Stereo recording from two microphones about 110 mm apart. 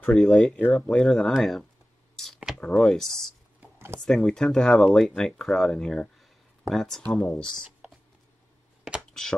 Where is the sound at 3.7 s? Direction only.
25° right (ahead or behind).